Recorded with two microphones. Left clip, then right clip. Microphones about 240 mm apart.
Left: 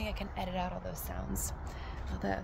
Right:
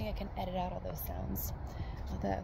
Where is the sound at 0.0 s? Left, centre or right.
Left.